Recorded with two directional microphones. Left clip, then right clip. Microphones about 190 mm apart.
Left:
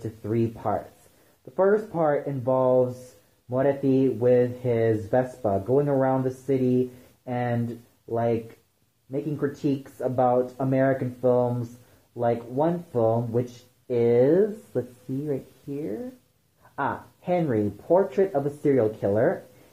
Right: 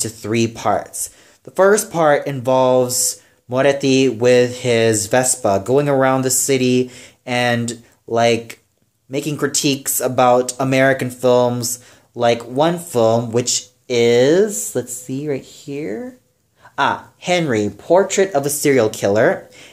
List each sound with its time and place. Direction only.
0.2 s speech: 30° right (ahead or behind)
9.1 s speech: 30° right (ahead or behind)
13.8 s speech: 20° right (ahead or behind)